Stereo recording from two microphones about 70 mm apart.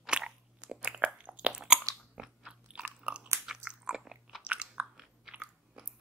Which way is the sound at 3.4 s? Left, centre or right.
Centre.